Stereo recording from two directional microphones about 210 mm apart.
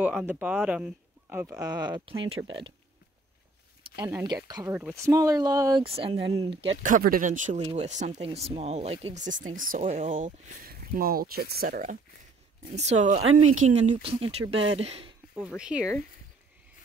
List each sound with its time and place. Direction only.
0.0 s speech: 5° right (ahead or behind); by 2.4 s 25° right (ahead or behind)
3.9 s speech: 15° right (ahead or behind)
6.8 s speech: 40° right (ahead or behind)
13.2 s speech: 85° right
13.5 s speech: 35° right (ahead or behind)
15.3 s speech: 5° right (ahead or behind)